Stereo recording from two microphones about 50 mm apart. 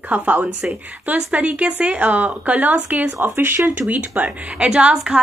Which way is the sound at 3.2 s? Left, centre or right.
Right.